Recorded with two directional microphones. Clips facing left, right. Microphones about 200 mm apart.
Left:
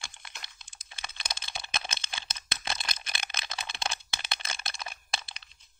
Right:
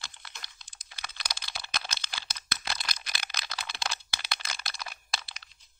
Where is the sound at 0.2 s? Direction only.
20° left (ahead or behind).